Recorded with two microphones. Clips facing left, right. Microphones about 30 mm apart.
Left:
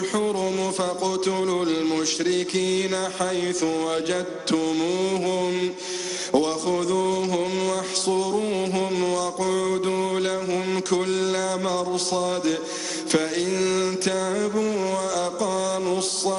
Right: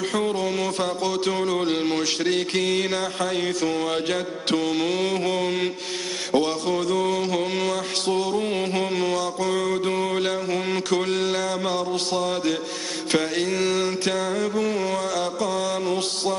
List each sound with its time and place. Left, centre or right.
0.1 s music: right
6.3 s mantra: right